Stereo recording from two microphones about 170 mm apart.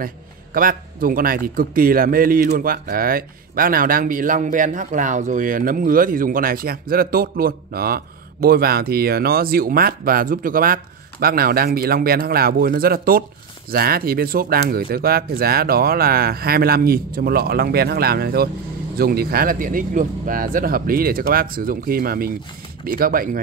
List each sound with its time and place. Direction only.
0.0 s a man's voice: 55° right (ahead or behind)